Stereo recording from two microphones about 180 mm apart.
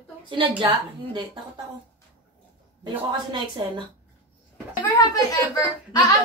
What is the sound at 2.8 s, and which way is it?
Speech, 25° right (ahead or behind).